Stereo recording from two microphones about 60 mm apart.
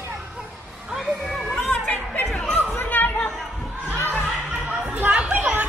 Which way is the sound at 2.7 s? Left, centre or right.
Left.